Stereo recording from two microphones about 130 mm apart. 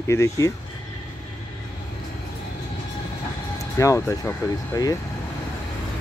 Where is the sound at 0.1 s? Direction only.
20° left (ahead or behind).